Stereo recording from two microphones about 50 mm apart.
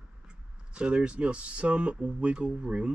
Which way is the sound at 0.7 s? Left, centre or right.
Right.